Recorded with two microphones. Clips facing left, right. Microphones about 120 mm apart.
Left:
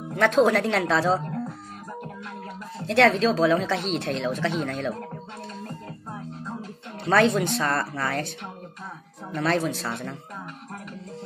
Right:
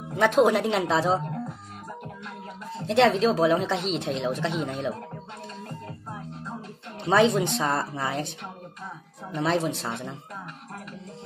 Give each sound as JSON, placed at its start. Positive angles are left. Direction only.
{"t": 0.1, "sound": "a woman's voice", "side_deg": -15}
{"t": 2.9, "sound": "a woman's voice", "side_deg": -15}
{"t": 7.1, "sound": "a woman's voice", "side_deg": -20}
{"t": 9.3, "sound": "a woman's voice", "side_deg": -15}